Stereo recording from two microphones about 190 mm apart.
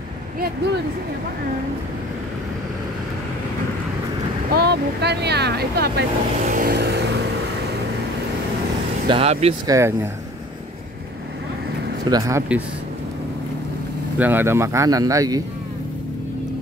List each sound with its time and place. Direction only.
4.5 s speech: 55° right (ahead or behind)
6.5 s vehicle: 55° right (ahead or behind)
9.0 s speech: 30° right (ahead or behind)
9.7 s speech: 15° right (ahead or behind)
12.1 s speech: 15° right (ahead or behind)
14.1 s speech: 10° right (ahead or behind)